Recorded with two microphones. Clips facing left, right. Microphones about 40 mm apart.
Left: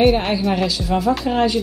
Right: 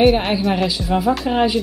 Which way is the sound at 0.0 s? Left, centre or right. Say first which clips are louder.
Right 1 dB; centre.